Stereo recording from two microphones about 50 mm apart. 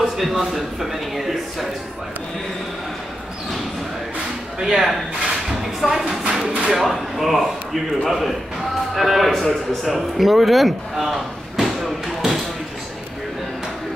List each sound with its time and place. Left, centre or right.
0.2 s speech: centre
4.6 s speech: centre
6.2 s a sound: right
6.7 s a man's voice: centre